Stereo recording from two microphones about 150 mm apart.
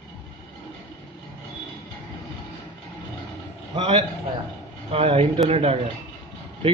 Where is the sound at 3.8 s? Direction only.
35° right (ahead or behind).